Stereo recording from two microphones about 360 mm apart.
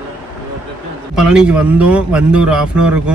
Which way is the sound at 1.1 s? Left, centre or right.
Centre.